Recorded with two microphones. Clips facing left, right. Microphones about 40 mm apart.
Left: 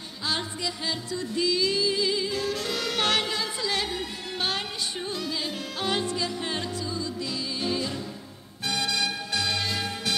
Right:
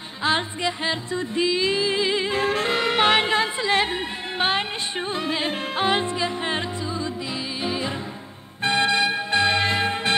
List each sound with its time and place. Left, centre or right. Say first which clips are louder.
0.2 s music: right 7 dB; right